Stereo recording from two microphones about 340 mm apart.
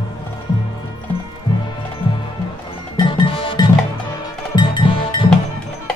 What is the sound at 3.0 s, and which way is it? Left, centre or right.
Music, centre.